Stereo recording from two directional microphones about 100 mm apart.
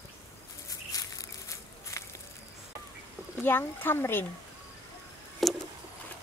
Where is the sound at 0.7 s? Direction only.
35° left (ahead or behind).